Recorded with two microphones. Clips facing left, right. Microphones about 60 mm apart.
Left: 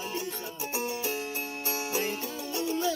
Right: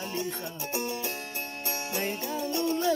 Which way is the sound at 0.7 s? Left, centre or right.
Centre.